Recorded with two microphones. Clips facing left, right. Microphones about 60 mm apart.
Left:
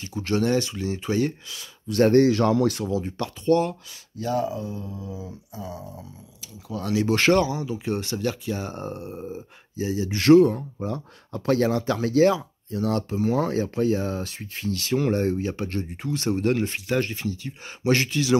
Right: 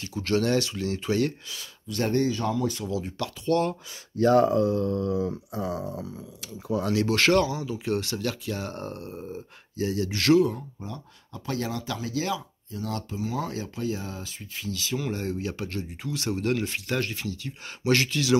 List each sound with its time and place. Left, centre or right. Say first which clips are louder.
0.0 s speech: left 1 dB; centre
1.9 s speech: left 8 dB; left
2.2 s speech: left 7 dB; left
2.8 s speech: left 3 dB; left
4.2 s speech: right 7 dB; right
6.8 s speech: left 2 dB; centre
7.1 s speech: left 3 dB; left
10.4 s speech: left 5 dB; left
10.9 s speech: left 10 dB; left
15.3 s speech: left 4 dB; left